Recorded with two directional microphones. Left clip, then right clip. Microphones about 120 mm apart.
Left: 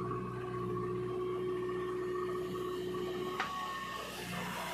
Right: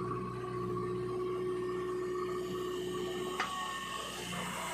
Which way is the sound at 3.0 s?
10° right (ahead or behind).